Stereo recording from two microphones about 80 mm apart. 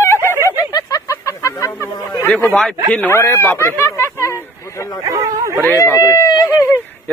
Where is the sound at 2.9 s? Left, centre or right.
Left.